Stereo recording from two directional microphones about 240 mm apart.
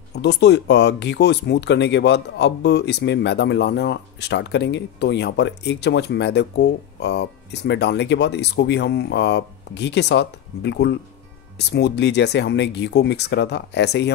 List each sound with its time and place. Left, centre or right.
0.1 s speech: left